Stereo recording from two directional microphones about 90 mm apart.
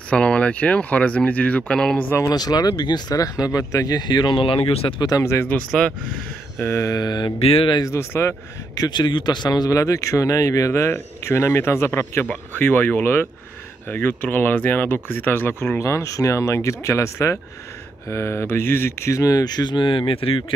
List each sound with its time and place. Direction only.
0.1 s speech: 10° left (ahead or behind)
2.0 s speech: 25° left (ahead or behind)
2.2 s speech: 45° left (ahead or behind); by 5.0 s 85° left
5.2 s speech: 30° left (ahead or behind)
5.5 s speech: 10° left (ahead or behind)
6.6 s speech: 35° left (ahead or behind)
7.0 s speech: 55° left (ahead or behind)
7.4 s speech: 80° left
7.8 s speech: 30° left (ahead or behind)
8.7 s speech: 50° left (ahead or behind); by 20.4 s 85° left